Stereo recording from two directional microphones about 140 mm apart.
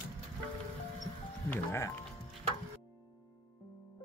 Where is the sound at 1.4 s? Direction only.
20° left (ahead or behind).